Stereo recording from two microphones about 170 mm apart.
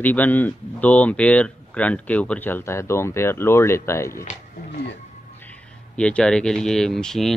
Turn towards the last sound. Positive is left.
turn(degrees=0)  # may be behind; listen again after turning